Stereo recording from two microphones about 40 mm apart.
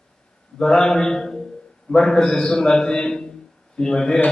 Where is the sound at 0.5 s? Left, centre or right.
Centre.